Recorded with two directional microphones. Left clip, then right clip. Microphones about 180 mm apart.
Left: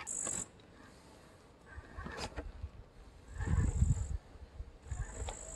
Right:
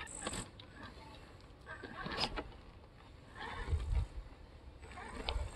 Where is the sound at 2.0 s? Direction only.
45° right (ahead or behind).